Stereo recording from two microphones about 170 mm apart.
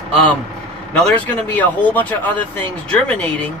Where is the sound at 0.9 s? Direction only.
10° left (ahead or behind).